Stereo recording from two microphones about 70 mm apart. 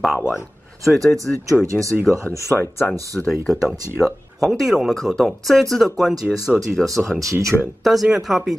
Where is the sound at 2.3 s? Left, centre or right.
Left.